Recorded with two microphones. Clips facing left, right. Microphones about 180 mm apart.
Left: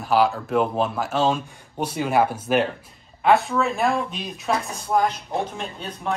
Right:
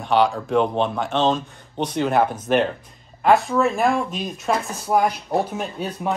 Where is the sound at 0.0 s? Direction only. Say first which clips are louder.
Right 1 dB; 5° left (ahead or behind).